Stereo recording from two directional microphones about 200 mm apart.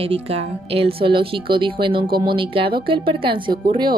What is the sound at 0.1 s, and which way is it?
Speech, 30° right (ahead or behind).